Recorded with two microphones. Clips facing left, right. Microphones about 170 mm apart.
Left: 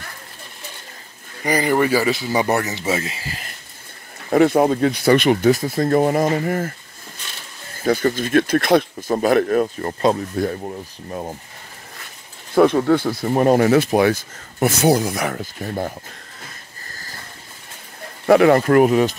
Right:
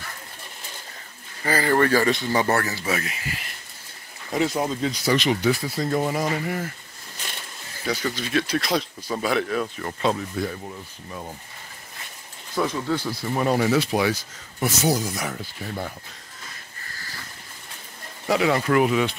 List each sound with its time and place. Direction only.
1.4 s speech: 15° left (ahead or behind); by 3.4 s 35° left (ahead or behind)
4.3 s speech: 55° left (ahead or behind)
7.8 s speech: 50° left (ahead or behind)
12.5 s speech: 60° left (ahead or behind)
18.2 s speech: 55° left (ahead or behind)